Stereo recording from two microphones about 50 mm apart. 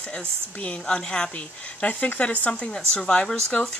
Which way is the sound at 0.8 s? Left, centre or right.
Centre.